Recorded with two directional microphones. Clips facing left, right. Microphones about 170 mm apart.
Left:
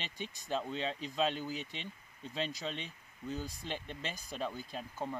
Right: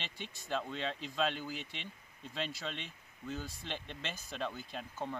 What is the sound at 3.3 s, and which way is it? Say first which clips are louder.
Speech: left 2 dB; 15° left (ahead or behind).